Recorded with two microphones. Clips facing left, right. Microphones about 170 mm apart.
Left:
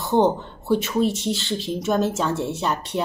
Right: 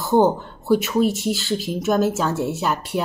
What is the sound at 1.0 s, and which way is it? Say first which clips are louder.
Speech: right 2 dB; 25° left (ahead or behind).